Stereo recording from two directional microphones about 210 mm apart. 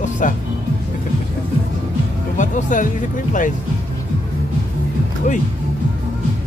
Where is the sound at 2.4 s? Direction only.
35° left (ahead or behind).